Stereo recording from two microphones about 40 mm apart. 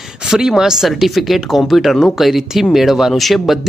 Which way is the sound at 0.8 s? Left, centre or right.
Centre.